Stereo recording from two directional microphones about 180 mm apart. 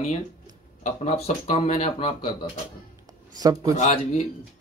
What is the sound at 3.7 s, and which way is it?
Speech, 40° left (ahead or behind).